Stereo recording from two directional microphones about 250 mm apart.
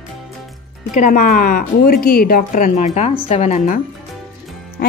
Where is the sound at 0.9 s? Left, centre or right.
Left.